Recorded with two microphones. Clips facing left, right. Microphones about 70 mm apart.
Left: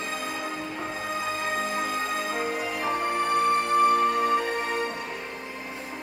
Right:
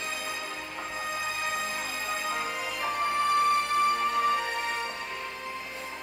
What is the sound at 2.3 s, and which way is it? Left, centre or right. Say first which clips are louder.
Music: left 4 dB; left.